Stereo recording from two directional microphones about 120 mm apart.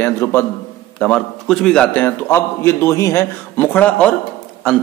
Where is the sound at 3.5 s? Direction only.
15° left (ahead or behind).